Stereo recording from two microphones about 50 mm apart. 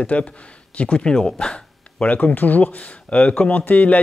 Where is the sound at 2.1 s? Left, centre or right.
Left.